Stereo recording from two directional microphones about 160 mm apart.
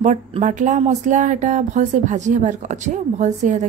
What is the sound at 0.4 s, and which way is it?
Speech, 50° right (ahead or behind).